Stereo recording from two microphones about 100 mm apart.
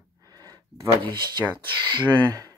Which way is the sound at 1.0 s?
50° right (ahead or behind).